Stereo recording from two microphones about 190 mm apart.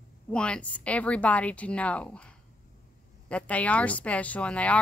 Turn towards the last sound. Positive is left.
turn(degrees=5)  # may be behind; listen again after turning